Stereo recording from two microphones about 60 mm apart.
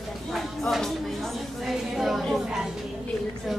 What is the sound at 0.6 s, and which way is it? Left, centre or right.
Music, centre.